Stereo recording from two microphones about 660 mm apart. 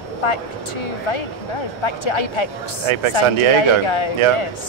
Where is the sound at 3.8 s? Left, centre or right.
Left.